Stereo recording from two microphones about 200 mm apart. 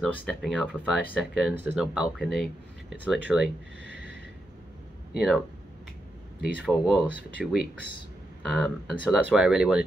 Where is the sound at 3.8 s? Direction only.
55° left (ahead or behind).